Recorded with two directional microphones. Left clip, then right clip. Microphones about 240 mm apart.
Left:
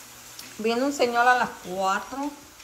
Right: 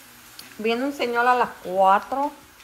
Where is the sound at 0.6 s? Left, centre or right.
Centre.